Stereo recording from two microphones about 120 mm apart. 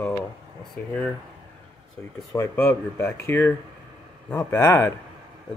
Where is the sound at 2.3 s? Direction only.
20° left (ahead or behind).